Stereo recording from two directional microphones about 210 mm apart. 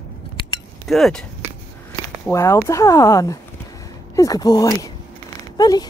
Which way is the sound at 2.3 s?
15° left (ahead or behind).